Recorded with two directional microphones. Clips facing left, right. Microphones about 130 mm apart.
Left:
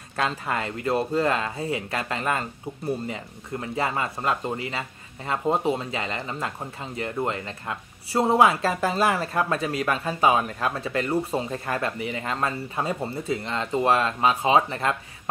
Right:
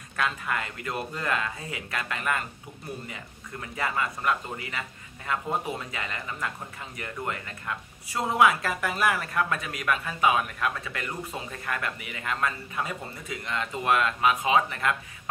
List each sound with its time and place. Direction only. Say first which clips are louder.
0.1 s speech: left 3 dB; 30° left (ahead or behind)